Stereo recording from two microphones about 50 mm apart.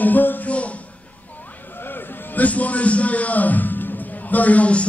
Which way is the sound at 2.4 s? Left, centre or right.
Left.